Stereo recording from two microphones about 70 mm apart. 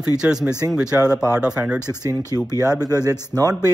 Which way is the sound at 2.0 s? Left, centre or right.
Right.